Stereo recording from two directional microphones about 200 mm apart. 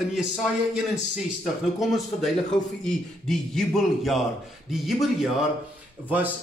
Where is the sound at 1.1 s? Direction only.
Centre (ahead or behind).